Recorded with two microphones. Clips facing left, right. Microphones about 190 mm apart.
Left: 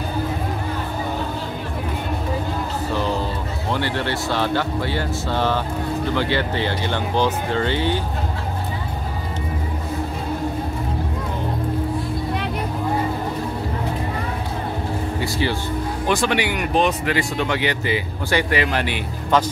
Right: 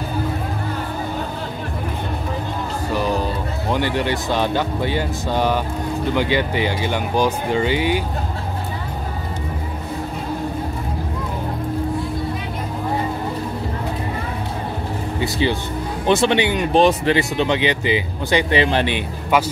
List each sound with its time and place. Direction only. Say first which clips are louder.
2.9 s music: right 3 dB; 10° right (ahead or behind)
3.7 s speech: right 3 dB; 15° right (ahead or behind)
15.1 s speech: right 5 dB; 20° right (ahead or behind)
19.3 s speech: even; 10° right (ahead or behind)